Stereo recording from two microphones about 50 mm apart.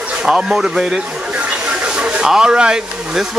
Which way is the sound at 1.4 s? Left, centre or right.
Right.